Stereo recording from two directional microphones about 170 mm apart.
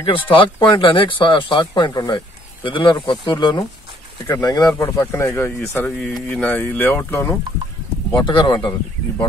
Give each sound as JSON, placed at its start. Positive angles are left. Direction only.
{"t": 0.0, "sound": "speech", "side_deg": 30}
{"t": 8.1, "sound": "speech", "side_deg": 25}